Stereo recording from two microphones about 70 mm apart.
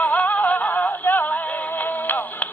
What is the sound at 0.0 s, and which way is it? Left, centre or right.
Music, left.